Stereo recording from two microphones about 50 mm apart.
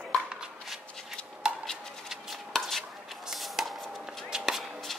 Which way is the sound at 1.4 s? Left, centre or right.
Centre.